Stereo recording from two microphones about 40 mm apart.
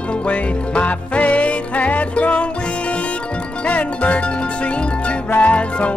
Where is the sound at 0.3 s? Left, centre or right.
Left.